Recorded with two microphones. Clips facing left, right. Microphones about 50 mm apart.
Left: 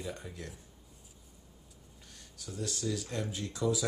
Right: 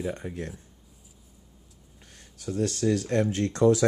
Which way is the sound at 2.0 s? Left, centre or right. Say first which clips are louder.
Right 12 dB; right.